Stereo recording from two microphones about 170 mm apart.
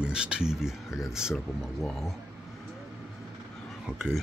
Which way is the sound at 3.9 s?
5° right (ahead or behind).